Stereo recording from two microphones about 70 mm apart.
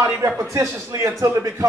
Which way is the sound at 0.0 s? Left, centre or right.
Right.